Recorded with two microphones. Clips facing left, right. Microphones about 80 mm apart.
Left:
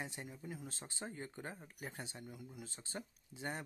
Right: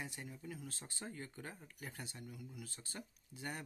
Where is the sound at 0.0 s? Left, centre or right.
Left.